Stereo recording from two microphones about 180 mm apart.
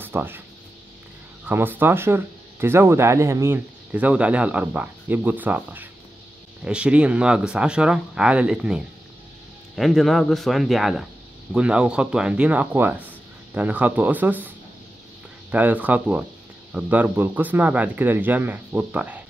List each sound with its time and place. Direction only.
0.0 s speech: 10° right (ahead or behind)
1.4 s speech: 10° right (ahead or behind)
15.5 s speech: 10° right (ahead or behind)